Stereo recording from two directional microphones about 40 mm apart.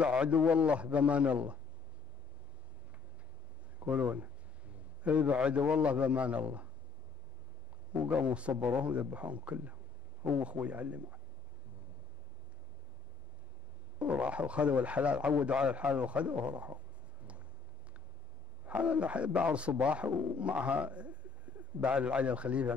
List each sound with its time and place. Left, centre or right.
0.0 s speech: right
4.1 s a man's voice: right
7.9 s speech: right
13.9 s speech: right
18.7 s speech: right